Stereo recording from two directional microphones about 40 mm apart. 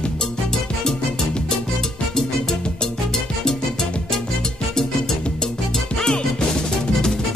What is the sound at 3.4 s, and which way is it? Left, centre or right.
Music, centre.